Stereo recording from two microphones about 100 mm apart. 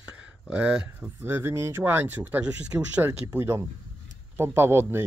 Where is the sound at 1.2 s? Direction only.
20° right (ahead or behind).